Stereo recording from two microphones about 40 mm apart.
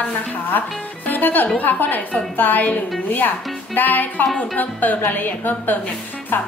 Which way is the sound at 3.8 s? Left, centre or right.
Left.